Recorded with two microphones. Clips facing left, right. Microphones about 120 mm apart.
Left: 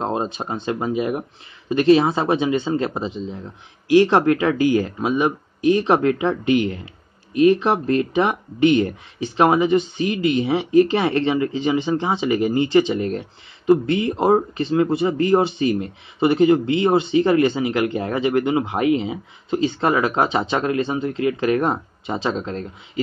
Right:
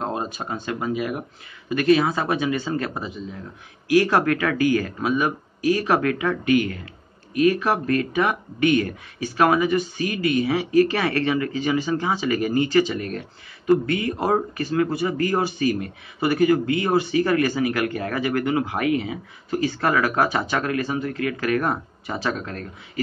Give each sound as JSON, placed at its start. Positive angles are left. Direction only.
{"t": 0.0, "sound": "a man's voice", "side_deg": 25}